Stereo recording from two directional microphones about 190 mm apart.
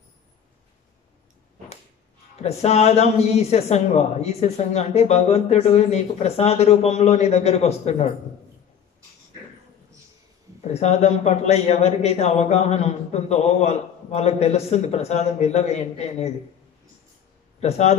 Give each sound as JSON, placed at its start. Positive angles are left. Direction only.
{"t": 2.4, "sound": "speech", "side_deg": 35}
{"t": 10.7, "sound": "speech", "side_deg": 35}
{"t": 17.6, "sound": "a man's voice", "side_deg": 35}